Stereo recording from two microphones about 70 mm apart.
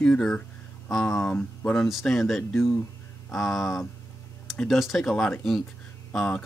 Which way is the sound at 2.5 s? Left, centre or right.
Left.